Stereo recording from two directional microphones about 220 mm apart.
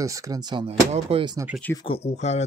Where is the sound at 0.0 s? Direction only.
15° right (ahead or behind).